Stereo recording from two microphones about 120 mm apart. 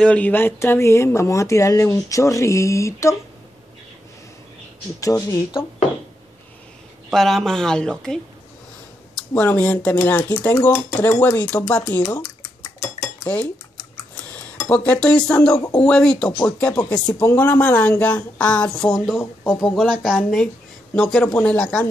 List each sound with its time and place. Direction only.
0.0 s speech: 10° left (ahead or behind)
5.0 s speech: 25° left (ahead or behind)
7.1 s a woman's voice: centre (ahead or behind)
12.2 s dishes: 35° left (ahead or behind)
14.3 s a woman's voice: 10° left (ahead or behind)